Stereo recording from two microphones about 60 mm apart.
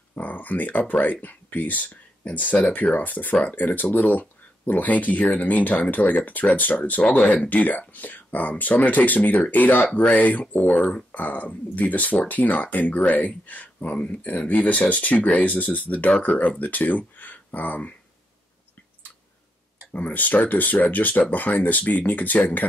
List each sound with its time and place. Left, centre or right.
0.1 s speech: left
7.0 s speech: centre
7.4 s speech: left
19.9 s speech: left